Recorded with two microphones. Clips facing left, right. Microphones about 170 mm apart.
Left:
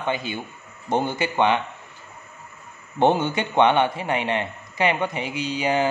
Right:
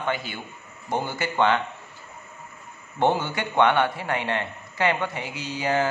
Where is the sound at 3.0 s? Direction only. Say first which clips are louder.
Left 3 dB; 20° left (ahead or behind).